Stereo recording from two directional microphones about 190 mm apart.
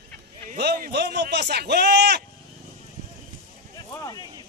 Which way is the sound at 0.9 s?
60° right (ahead or behind).